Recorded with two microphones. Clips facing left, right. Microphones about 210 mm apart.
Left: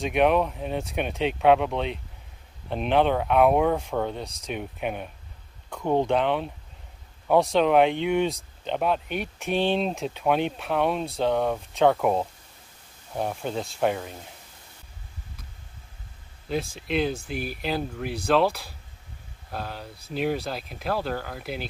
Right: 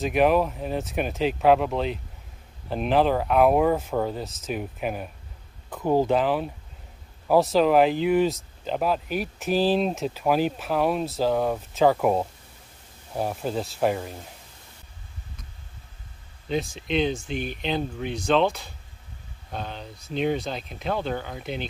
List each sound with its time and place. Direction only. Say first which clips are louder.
0.0 s speech: right 1 dB; centre (ahead or behind)
16.5 s speech: right 1 dB; 5° left (ahead or behind)